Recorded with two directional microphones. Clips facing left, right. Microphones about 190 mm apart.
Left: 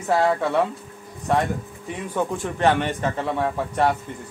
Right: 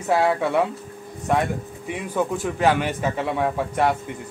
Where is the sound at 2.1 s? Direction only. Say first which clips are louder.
Right 1 dB; 5° right (ahead or behind).